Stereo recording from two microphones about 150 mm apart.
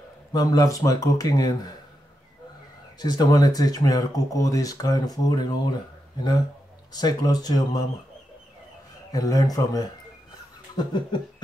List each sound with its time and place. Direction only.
0.3 s speech: 25° left (ahead or behind)
3.0 s speech: 25° left (ahead or behind)
6.9 s speech: 25° left (ahead or behind)
9.1 s speech: 25° left (ahead or behind)